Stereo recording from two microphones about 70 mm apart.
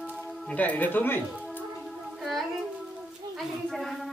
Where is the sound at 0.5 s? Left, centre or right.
Left.